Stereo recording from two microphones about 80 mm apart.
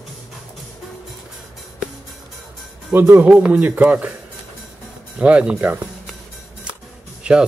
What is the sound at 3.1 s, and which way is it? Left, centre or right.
Speech, centre.